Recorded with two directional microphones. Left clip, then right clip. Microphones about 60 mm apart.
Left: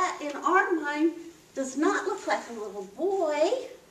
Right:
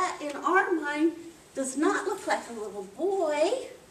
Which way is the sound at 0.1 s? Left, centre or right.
Centre.